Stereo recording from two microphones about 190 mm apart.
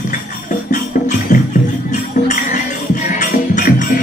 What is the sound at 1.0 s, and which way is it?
Music, 40° left (ahead or behind).